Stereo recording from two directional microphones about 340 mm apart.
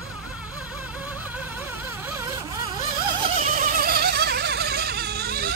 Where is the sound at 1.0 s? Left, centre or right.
Centre.